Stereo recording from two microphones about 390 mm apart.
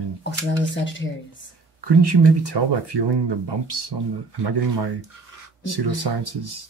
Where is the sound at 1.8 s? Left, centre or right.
Right.